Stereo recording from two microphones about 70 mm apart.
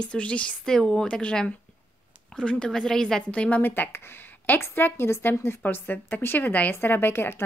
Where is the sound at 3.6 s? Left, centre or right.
Left.